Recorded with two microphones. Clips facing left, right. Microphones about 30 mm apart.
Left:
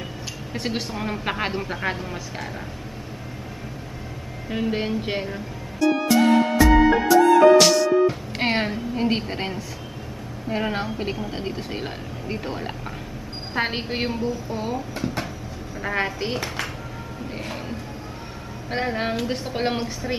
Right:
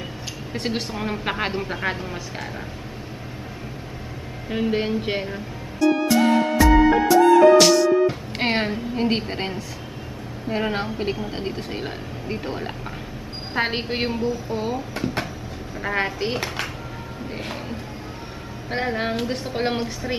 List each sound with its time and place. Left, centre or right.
0.5 s a woman's voice: centre
4.5 s music: centre
7.5 s a woman's voice: centre
18.7 s a woman's voice: centre